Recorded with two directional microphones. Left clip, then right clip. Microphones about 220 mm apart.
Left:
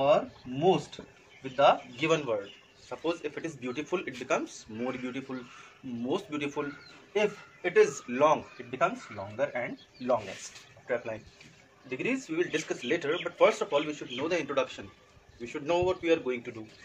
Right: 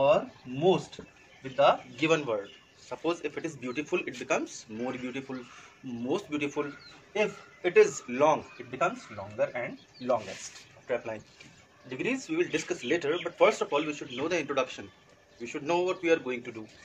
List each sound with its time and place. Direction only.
0.0 s speech: 5° right (ahead or behind)
2.0 s speech: 20° right (ahead or behind)
12.0 s speech: 25° right (ahead or behind)